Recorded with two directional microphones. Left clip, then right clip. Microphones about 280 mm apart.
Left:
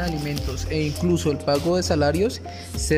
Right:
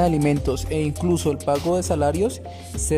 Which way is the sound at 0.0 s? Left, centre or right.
Centre.